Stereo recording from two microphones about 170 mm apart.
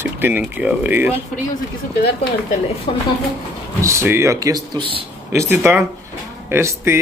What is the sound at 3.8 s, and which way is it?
Speech, 15° right (ahead or behind).